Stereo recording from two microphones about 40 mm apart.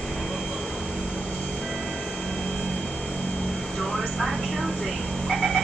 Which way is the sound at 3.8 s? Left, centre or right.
Centre.